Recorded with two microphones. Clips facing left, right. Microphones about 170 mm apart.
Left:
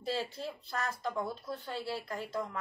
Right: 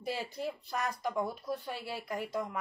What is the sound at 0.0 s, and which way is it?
Speech, 15° right (ahead or behind).